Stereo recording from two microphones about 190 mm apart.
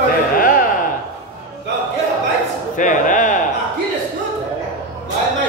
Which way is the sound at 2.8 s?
40° left (ahead or behind).